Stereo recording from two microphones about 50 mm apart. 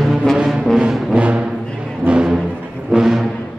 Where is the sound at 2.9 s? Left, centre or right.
Centre.